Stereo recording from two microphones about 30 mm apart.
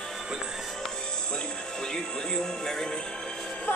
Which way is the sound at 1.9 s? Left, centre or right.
Centre.